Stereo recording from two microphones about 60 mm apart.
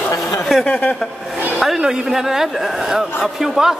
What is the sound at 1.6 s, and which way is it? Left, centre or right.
A man's voice, centre.